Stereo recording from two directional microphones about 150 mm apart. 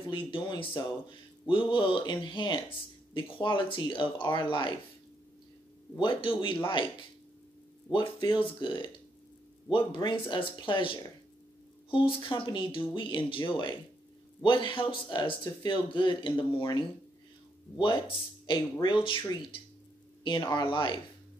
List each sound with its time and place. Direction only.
0.1 s speech: 35° left (ahead or behind)
5.9 s speech: 35° left (ahead or behind)